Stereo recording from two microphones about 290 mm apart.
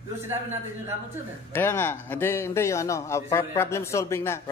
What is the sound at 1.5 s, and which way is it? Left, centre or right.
Speech, centre.